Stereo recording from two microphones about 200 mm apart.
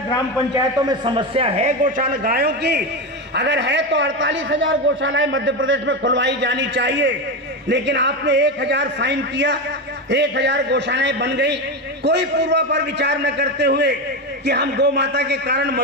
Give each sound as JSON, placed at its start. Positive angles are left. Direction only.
{"t": 0.6, "sound": "a man's voice", "side_deg": -20}
{"t": 1.9, "sound": "a man's voice", "side_deg": -45}